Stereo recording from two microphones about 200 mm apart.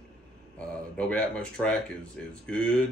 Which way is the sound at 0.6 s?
5° left (ahead or behind).